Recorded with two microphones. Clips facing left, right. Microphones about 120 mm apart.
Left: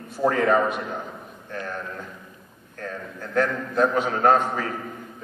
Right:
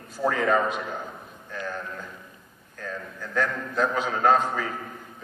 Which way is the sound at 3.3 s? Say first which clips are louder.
Left 4 dB; 50° left (ahead or behind).